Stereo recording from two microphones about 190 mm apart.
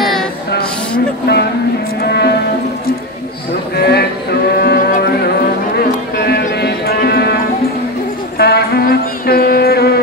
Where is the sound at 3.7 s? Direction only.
60° left (ahead or behind).